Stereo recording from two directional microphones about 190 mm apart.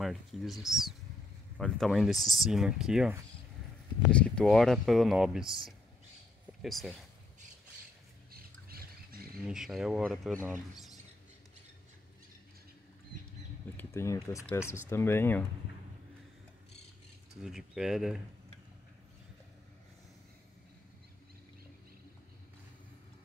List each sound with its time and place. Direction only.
0.0 s speech: centre (ahead or behind)
6.6 s speech: centre (ahead or behind)
8.3 s a sound: 50° right (ahead or behind)
9.4 s speech: 5° right (ahead or behind)
10.4 s speech: 10° right (ahead or behind)
13.7 s speech: 15° left (ahead or behind)
17.4 s speech: centre (ahead or behind)